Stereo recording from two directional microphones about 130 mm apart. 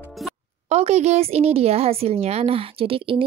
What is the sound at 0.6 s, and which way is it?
A woman's voice, 55° right (ahead or behind).